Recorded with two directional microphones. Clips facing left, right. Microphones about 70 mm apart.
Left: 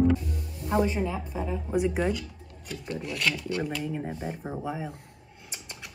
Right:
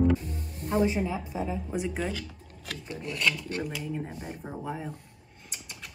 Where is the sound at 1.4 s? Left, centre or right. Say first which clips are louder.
Left 6 dB; centre.